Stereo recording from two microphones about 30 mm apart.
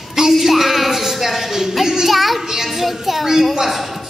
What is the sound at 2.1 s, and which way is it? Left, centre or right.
A woman's voice, centre.